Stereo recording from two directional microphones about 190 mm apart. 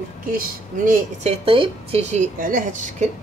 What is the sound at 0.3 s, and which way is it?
A woman's voice, 50° right (ahead or behind).